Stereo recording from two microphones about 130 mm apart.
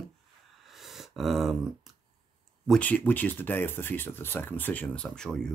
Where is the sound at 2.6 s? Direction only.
10° left (ahead or behind).